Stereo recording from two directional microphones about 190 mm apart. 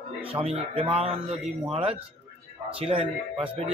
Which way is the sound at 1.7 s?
30° right (ahead or behind).